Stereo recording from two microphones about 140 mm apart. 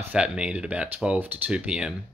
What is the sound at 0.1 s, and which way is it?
Speech, 10° right (ahead or behind).